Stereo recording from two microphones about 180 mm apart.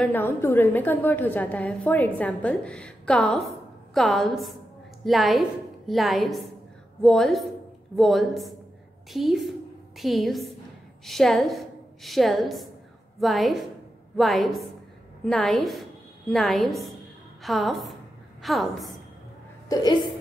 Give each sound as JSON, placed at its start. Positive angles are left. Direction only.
{"t": 0.0, "sound": "a woman's voice", "side_deg": 10}
{"t": 19.7, "sound": "speech", "side_deg": 25}